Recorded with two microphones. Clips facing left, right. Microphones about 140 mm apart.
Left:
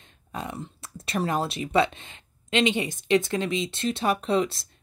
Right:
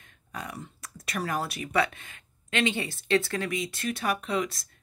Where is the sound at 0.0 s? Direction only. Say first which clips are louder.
Left 4 dB; 25° left (ahead or behind).